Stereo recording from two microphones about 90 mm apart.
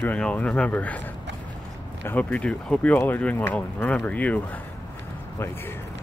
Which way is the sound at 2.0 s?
15° left (ahead or behind).